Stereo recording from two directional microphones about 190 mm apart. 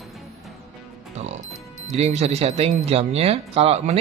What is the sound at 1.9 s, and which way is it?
A man's voice, 35° right (ahead or behind).